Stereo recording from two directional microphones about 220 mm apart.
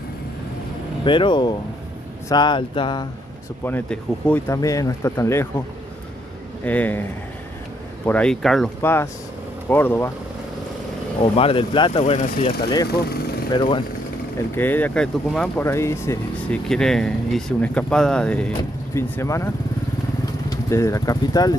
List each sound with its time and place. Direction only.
1.0 s speech: 20° left (ahead or behind)
3.6 s speech: 10° left (ahead or behind)
6.6 s speech: 5° left (ahead or behind)
11.3 s speech: 25° left (ahead or behind)
14.5 s speech: 10° left (ahead or behind)
16.6 s speech: centre (ahead or behind)